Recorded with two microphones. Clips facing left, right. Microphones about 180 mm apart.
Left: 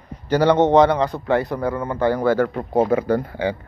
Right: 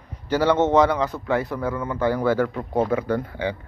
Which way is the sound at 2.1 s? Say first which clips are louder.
Left 3 dB; 45° left (ahead or behind).